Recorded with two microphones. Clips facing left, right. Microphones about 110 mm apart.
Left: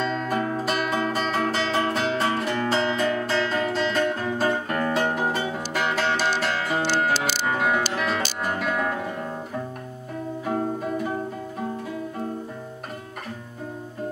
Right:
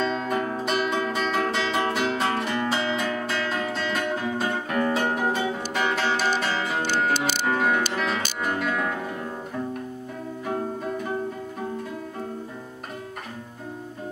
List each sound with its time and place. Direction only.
0.0 s music: centre (ahead or behind)
7.2 s music: 50° right (ahead or behind)
7.4 s music: centre (ahead or behind)
10.4 s music: 5° left (ahead or behind)